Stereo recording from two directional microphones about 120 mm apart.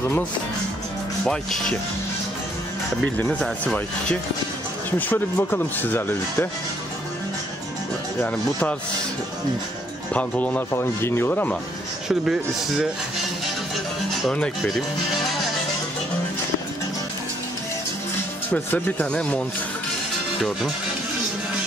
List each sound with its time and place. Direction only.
1.2 s speech: 5° left (ahead or behind)
3.2 s speech: 10° left (ahead or behind)
8.2 s speech: 10° left (ahead or behind)
10.1 s speech: 10° left (ahead or behind)
12.1 s speech: 5° right (ahead or behind)
14.2 s speech: 5° left (ahead or behind)
18.5 s speech: 15° left (ahead or behind)